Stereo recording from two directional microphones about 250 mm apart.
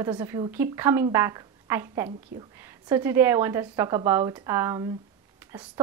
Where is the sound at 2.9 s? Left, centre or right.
Centre.